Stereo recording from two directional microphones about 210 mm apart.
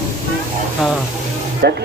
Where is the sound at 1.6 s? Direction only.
50° right (ahead or behind).